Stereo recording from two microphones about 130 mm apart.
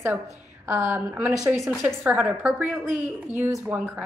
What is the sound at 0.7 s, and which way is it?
A woman's voice, 15° right (ahead or behind).